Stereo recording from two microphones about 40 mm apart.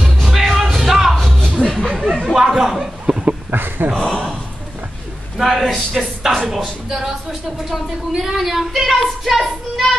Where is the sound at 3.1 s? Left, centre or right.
Right.